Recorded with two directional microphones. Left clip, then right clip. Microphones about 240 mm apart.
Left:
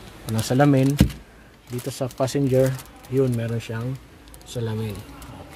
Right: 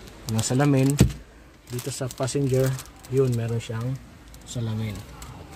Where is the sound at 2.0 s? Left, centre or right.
Centre.